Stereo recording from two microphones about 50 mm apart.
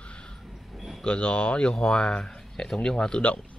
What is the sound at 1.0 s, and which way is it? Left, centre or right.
Speech, left.